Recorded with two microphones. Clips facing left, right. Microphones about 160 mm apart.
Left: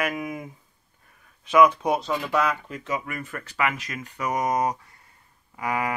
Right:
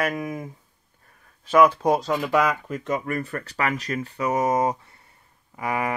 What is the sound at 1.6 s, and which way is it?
Speech, 35° right (ahead or behind).